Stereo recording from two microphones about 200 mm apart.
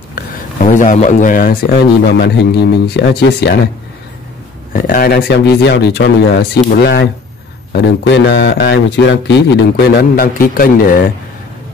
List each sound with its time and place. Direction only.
0.1 s speech: 40° left (ahead or behind); by 3.5 s 60° left (ahead or behind)
4.7 s a man's voice: 45° left (ahead or behind)